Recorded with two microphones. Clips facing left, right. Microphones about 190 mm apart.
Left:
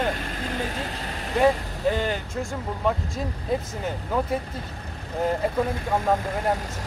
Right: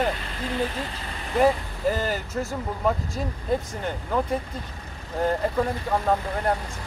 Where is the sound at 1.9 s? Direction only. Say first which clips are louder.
Even; 5° right (ahead or behind).